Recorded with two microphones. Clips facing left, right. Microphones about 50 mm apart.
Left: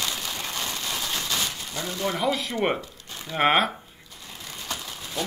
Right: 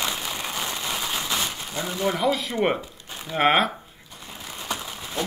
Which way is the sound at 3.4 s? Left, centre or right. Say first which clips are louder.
Right 1 dB; centre.